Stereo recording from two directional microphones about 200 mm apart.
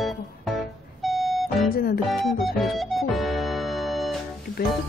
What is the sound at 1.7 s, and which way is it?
Speech, 50° left (ahead or behind).